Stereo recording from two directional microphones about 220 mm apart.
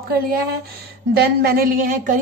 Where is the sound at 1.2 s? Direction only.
45° right (ahead or behind).